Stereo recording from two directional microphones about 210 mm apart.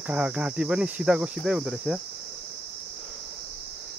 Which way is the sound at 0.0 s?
5° right (ahead or behind).